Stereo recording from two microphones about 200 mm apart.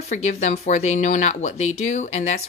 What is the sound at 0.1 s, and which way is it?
Speech, 35° left (ahead or behind).